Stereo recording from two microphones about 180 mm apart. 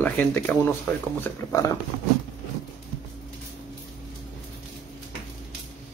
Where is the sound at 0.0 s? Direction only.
10° left (ahead or behind).